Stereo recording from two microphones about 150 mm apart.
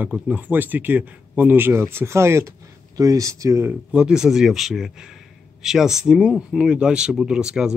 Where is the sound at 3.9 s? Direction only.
5° right (ahead or behind).